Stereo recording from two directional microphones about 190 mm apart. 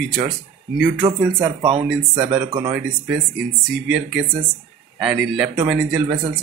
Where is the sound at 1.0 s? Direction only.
20° right (ahead or behind).